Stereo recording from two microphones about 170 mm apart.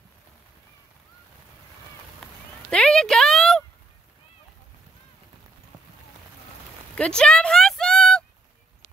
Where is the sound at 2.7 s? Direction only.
5° left (ahead or behind).